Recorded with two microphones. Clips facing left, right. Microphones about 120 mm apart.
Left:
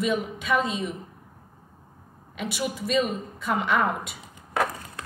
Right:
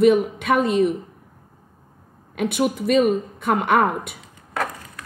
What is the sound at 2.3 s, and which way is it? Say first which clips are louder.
A woman's voice: right 9 dB; 60° right (ahead or behind).